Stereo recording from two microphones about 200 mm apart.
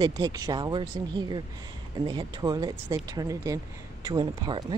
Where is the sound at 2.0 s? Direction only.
20° right (ahead or behind).